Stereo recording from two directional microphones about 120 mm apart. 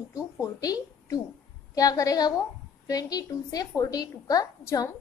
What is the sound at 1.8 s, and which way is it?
A woman's voice, 30° left (ahead or behind).